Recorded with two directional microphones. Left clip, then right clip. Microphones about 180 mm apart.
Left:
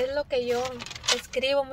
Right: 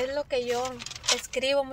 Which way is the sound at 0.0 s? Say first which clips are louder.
Left 2 dB; centre (ahead or behind).